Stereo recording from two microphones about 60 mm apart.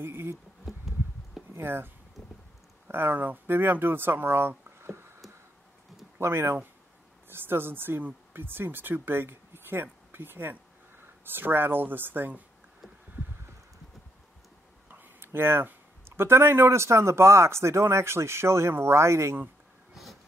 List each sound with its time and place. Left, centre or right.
0.0 s speech: right
0.7 s bee: centre
1.6 s speech: right
2.2 s wind: centre
2.9 s speech: right
6.1 s speech: right
14.9 s speech: right
19.9 s thunder: centre